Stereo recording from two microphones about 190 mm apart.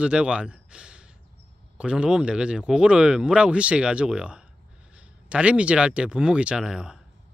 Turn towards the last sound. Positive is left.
turn(degrees=-5)  # may be behind; listen again after turning